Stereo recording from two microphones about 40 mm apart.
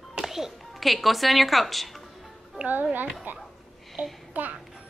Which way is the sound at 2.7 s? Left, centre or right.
Right.